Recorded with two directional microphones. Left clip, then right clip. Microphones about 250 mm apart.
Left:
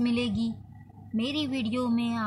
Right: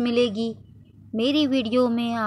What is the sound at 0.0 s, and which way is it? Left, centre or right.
A woman's voice, right.